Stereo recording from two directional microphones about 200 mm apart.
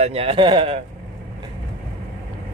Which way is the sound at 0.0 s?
30° right (ahead or behind).